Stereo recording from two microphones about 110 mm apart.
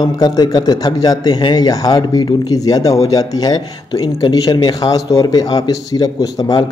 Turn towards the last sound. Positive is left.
turn(degrees=35)  # may be behind; listen again after turning